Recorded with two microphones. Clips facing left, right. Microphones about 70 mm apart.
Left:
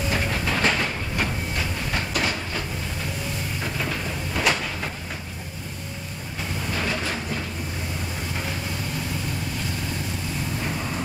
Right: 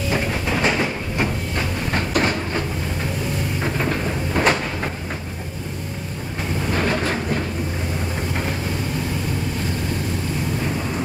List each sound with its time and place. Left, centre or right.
0.1 s train: centre
1.9 s train: right
3.6 s a sound: right
6.7 s train: right